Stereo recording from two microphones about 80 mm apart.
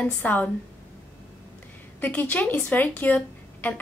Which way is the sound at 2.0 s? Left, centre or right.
Left.